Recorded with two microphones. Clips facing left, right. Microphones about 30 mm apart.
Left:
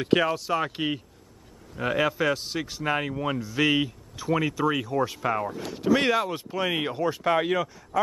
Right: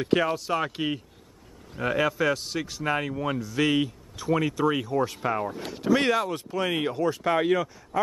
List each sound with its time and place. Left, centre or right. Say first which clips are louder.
0.0 s speech: left 1 dB; centre
0.4 s speech: left 1 dB; centre
0.7 s speech: even; centre